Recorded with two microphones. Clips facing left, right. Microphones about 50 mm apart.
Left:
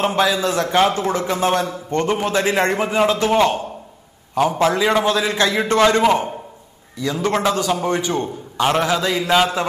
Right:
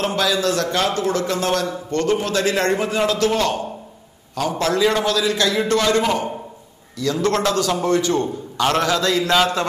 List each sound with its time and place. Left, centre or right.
0.0 s a man's voice: left